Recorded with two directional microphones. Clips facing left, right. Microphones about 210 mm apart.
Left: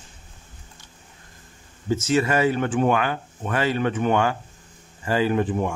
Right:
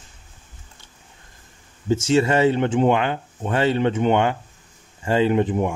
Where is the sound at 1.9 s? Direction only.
25° right (ahead or behind).